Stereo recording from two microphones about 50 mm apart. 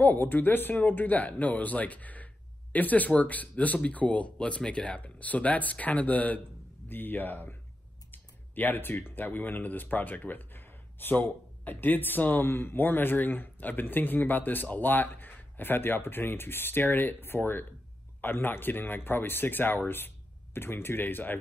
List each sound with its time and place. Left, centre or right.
0.0 s speech: left
6.9 s speech: left